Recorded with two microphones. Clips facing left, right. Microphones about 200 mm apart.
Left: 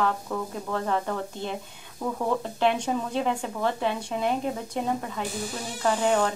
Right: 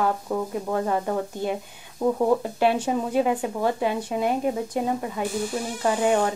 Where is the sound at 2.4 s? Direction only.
10° right (ahead or behind).